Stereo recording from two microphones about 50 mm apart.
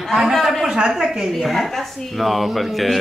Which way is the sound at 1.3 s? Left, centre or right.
Centre.